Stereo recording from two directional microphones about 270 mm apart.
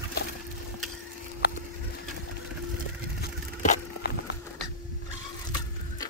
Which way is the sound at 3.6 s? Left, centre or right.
Left.